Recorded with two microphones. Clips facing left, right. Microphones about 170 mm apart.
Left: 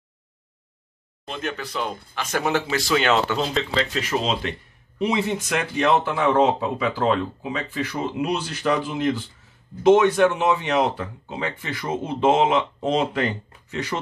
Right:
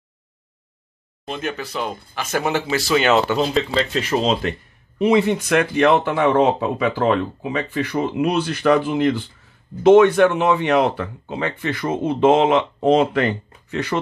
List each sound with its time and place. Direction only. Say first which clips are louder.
1.2 s speech: right 3 dB; 5° right (ahead or behind)
3.9 s speech: right 5 dB; 35° right (ahead or behind); by 13.9 s 60° right (ahead or behind)